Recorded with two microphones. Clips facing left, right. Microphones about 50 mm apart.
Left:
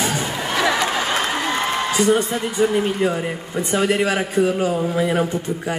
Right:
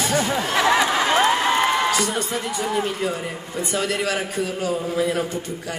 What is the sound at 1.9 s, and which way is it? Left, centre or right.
A man's voice, left.